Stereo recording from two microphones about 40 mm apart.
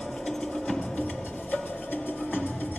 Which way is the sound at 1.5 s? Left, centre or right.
Left.